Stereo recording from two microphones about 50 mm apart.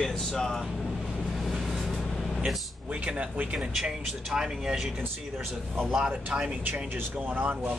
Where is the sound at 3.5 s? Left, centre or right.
Centre.